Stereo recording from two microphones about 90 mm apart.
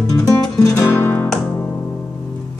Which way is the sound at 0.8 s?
25° left (ahead or behind).